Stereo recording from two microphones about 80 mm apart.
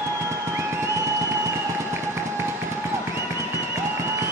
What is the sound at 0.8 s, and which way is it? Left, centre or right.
Music, right.